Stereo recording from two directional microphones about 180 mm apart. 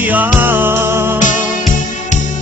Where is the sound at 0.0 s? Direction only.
10° right (ahead or behind).